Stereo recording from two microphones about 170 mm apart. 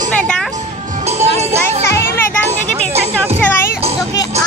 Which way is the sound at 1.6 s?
15° left (ahead or behind).